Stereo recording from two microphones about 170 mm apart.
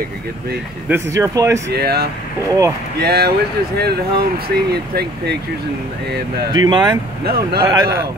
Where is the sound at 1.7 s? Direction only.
65° right (ahead or behind).